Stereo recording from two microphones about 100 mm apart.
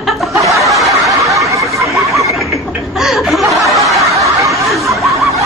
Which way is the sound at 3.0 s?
Centre (ahead or behind).